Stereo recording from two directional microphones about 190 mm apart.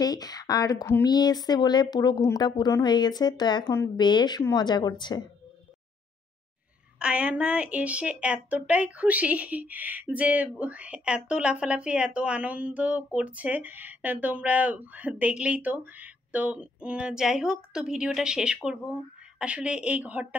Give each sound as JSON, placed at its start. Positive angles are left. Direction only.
{"t": 0.0, "sound": "speech", "side_deg": 20}
{"t": 7.0, "sound": "speech", "side_deg": -5}